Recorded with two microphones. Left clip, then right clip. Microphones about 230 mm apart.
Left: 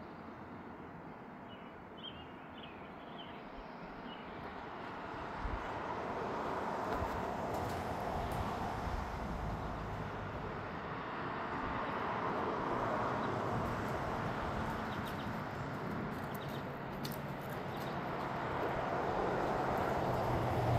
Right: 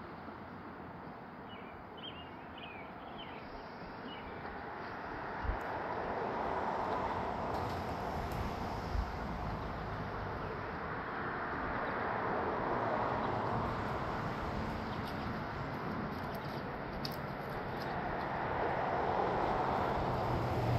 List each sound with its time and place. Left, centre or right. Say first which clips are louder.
5.5 s vehicle: right 2 dB; left
11.1 s vehicle: right 1 dB; left
17.9 s vehicle: right 3 dB; left